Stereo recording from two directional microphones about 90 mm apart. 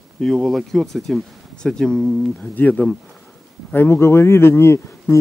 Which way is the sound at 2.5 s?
20° left (ahead or behind).